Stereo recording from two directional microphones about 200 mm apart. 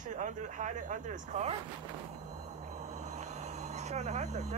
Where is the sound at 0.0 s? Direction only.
40° right (ahead or behind).